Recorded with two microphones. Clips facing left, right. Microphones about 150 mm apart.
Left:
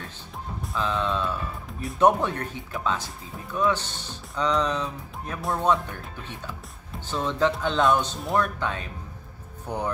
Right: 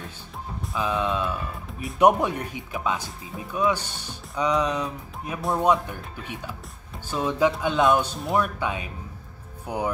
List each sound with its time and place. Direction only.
0.7 s speech: 10° right (ahead or behind)